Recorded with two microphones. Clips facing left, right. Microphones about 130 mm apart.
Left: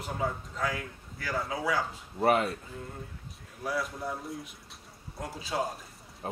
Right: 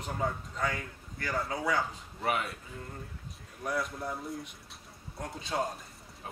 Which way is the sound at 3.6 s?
Centre (ahead or behind).